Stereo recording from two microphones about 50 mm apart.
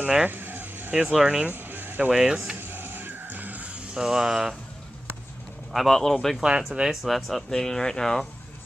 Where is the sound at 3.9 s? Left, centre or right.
Centre.